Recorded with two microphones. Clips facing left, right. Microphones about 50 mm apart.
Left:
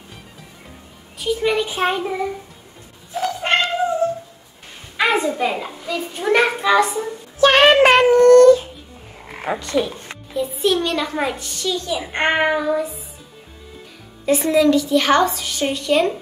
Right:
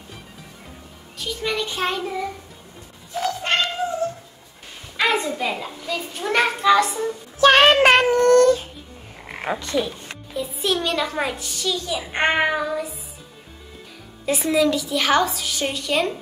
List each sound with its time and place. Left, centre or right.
1.1 s a child's voice: centre
3.4 s cat: left
4.9 s a sound: centre
5.9 s a child's voice: centre
7.3 s child singing: left
8.0 s child singing: left
9.5 s child singing: left
9.8 s a child's voice: centre
10.3 s a woman's voice: centre
14.2 s a woman's voice: centre